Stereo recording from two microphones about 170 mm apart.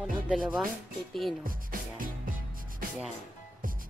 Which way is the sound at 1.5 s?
55° right (ahead or behind).